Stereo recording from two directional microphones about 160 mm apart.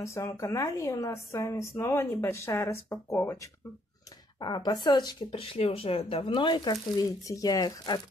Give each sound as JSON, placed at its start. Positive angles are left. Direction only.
{"t": 0.0, "sound": "speech", "side_deg": 20}